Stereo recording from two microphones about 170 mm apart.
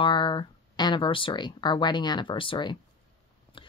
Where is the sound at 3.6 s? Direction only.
30° left (ahead or behind).